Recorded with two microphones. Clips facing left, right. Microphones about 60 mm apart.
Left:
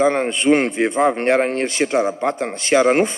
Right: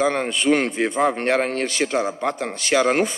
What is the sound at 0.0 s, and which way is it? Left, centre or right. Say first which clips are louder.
A man's voice: left 4 dB; left.